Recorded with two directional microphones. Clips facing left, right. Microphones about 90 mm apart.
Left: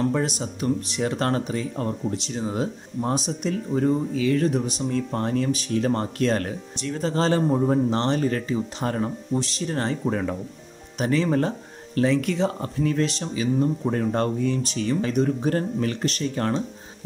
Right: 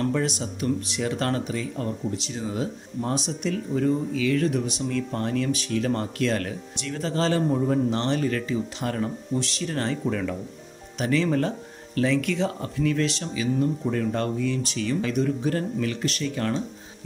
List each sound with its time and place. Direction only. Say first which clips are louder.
0.1 s speech: left 1 dB; 30° left (ahead or behind)